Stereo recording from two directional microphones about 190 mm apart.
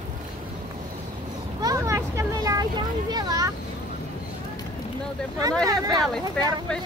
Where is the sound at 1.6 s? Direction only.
15° right (ahead or behind).